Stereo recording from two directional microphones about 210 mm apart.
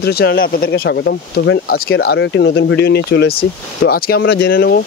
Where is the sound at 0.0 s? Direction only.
50° left (ahead or behind).